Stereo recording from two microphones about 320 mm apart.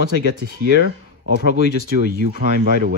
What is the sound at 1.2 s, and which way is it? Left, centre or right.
Speech, right.